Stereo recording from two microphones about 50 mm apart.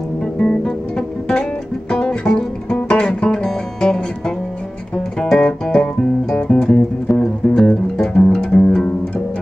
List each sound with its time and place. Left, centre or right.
0.4 s music: centre
5.2 s music: centre